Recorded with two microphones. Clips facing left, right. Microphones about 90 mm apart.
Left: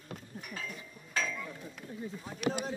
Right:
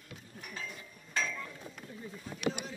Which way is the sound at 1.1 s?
5° left (ahead or behind).